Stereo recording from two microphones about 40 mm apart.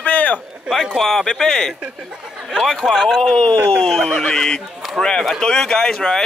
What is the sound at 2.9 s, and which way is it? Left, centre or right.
Speech, centre.